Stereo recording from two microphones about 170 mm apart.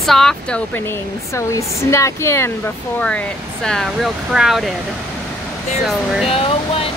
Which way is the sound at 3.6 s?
5° left (ahead or behind).